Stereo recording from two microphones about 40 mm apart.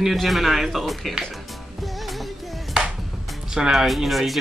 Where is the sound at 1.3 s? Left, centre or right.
Centre.